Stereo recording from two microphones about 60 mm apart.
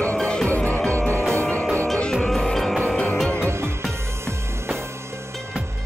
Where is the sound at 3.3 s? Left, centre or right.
Right.